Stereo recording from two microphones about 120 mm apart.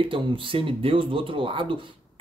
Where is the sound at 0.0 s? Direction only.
45° right (ahead or behind).